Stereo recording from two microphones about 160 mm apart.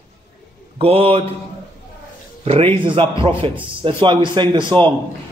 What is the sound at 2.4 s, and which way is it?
A man's voice, 35° right (ahead or behind).